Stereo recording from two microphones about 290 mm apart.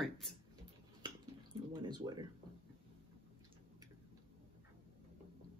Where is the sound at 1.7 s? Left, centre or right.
Centre.